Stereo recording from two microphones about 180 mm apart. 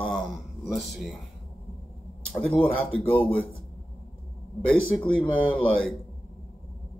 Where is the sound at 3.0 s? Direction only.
10° left (ahead or behind).